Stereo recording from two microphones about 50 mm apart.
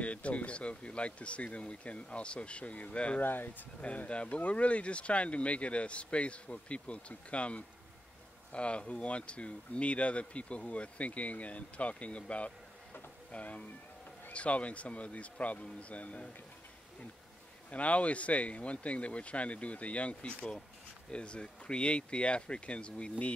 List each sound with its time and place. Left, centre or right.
0.0 s speech: left
3.2 s speech: left
3.8 s speech: left
17.6 s speech: left